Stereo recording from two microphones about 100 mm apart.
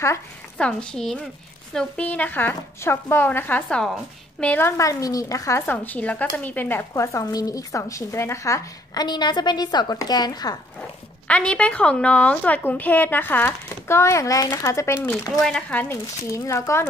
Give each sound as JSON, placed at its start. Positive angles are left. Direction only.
{"t": 0.6, "sound": "a woman's voice", "side_deg": 10}
{"t": 3.6, "sound": "speech", "side_deg": 5}
{"t": 4.5, "sound": "speech", "side_deg": 25}
{"t": 5.7, "sound": "speech", "side_deg": 15}
{"t": 11.2, "sound": "a woman's voice", "side_deg": 10}
{"t": 15.3, "sound": "a woman's voice", "side_deg": 5}
{"t": 16.3, "sound": "speech", "side_deg": 30}